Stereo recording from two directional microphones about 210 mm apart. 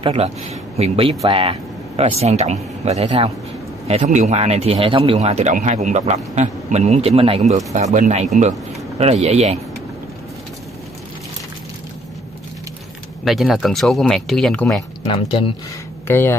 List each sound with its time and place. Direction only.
0.0 s speech: 30° right (ahead or behind)
13.2 s speech: centre (ahead or behind)
15.0 s speech: 25° left (ahead or behind)
16.1 s speech: 10° left (ahead or behind)